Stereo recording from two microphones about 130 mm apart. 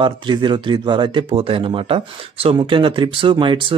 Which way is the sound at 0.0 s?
35° right (ahead or behind).